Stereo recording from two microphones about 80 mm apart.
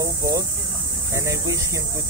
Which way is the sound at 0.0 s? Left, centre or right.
Right.